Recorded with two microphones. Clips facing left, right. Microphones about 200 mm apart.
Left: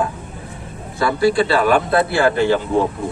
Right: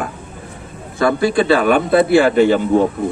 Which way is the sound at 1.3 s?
55° right (ahead or behind).